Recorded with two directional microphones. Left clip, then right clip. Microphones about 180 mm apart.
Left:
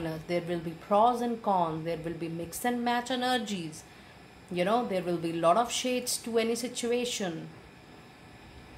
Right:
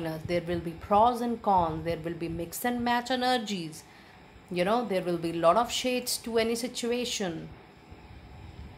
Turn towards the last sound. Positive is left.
turn(degrees=-35)  # may be behind; listen again after turning